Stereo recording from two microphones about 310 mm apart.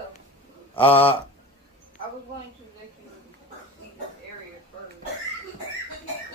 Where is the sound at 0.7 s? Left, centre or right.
Centre.